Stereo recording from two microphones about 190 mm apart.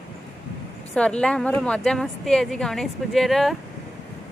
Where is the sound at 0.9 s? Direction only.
5° left (ahead or behind).